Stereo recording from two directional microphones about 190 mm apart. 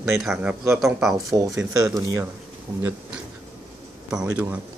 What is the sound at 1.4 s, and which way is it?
Speech, 5° right (ahead or behind).